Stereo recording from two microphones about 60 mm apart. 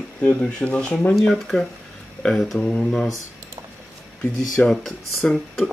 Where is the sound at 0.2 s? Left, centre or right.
Centre.